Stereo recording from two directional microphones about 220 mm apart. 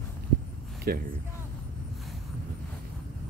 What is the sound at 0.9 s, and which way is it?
Speech, 45° right (ahead or behind).